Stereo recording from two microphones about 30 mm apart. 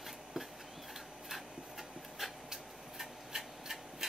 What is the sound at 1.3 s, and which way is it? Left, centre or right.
Rub, centre.